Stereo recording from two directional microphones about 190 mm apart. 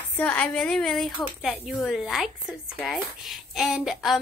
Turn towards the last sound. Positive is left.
turn(degrees=0)  # may be behind; listen again after turning